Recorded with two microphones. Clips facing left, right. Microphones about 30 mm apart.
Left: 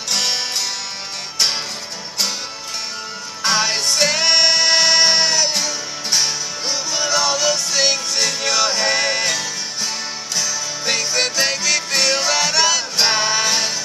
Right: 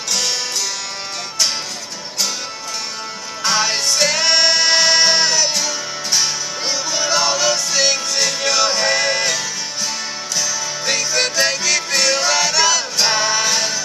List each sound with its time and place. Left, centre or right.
0.1 s music: left
3.4 s music: centre